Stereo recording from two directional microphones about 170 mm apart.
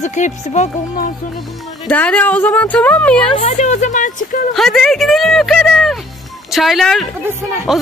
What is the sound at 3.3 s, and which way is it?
Speech, 45° left (ahead or behind).